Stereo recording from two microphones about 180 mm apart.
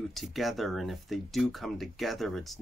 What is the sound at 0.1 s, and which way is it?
Speech, centre (ahead or behind).